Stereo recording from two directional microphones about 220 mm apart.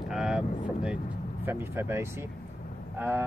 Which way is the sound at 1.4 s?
10° right (ahead or behind).